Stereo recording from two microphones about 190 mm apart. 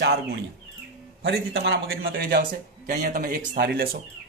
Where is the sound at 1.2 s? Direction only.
55° right (ahead or behind).